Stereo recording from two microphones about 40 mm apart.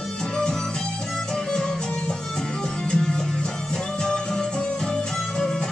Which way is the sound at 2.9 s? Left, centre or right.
Centre.